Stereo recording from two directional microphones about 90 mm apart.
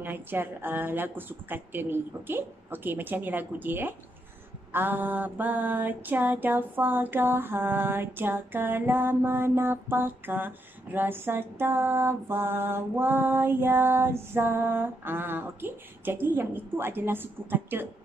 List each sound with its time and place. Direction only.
0.0 s mantra: 25° right (ahead or behind)